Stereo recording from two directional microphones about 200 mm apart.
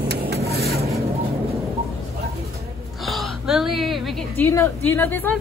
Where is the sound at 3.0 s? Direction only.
Centre (ahead or behind).